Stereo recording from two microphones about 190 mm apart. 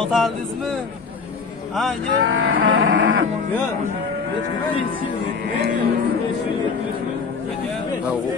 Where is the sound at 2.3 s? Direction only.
90° right.